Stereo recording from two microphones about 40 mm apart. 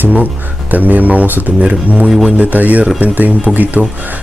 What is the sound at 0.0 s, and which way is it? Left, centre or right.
Speech, right.